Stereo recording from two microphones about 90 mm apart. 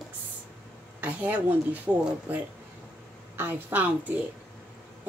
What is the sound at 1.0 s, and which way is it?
Speech, 20° right (ahead or behind).